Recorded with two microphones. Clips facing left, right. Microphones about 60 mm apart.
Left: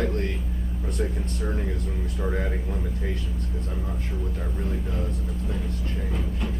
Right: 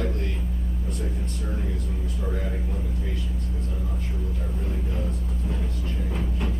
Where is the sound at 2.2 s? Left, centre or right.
Left.